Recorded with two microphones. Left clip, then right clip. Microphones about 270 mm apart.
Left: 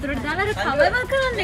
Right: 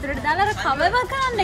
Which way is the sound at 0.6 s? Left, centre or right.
Centre.